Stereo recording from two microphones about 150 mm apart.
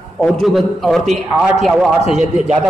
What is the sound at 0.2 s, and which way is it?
A man's voice, centre (ahead or behind).